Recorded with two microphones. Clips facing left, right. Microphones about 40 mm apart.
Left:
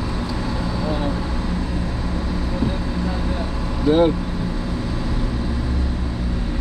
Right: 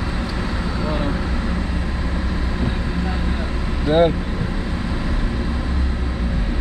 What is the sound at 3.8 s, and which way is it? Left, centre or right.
Speech, right.